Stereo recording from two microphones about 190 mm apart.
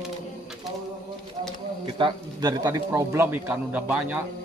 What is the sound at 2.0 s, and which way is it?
A man's voice, 25° right (ahead or behind).